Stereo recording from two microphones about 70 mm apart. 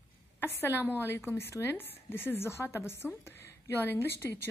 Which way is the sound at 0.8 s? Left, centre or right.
Left.